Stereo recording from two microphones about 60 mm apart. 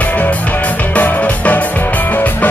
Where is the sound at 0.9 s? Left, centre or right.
Left.